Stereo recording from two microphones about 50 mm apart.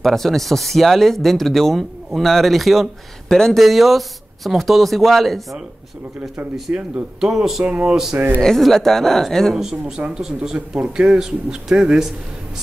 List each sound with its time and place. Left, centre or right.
0.0 s speech: centre
6.7 s speech: right
7.2 s a man's voice: centre
7.6 s speech: right
7.9 s a man's voice: centre
8.4 s speech: centre
9.6 s a man's voice: centre